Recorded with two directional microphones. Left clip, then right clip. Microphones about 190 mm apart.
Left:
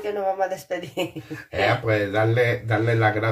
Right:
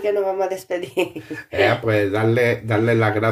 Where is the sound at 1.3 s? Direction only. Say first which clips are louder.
Right 3 dB; 50° right (ahead or behind).